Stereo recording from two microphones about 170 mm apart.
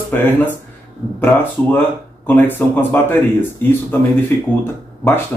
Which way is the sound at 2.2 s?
10° left (ahead or behind).